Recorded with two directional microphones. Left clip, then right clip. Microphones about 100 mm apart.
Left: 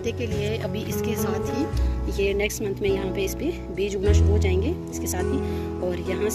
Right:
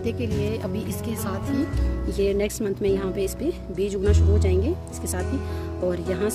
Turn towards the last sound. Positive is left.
turn(degrees=-40)  # may be behind; listen again after turning